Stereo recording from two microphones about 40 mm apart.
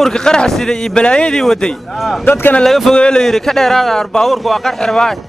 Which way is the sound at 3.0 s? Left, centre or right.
Centre.